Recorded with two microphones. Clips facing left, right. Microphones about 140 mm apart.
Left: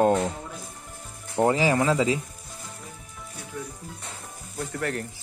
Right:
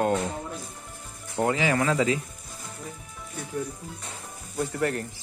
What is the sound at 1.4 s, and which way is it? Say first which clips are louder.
Speech: left 3 dB; 35° left (ahead or behind).